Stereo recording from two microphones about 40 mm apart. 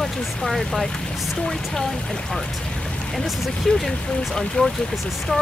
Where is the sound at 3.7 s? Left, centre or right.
Centre.